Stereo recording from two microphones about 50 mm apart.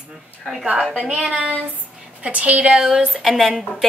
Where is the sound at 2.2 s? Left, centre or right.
Right.